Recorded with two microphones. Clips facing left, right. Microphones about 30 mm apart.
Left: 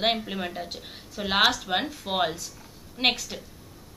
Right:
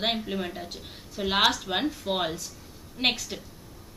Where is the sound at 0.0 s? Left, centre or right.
Centre.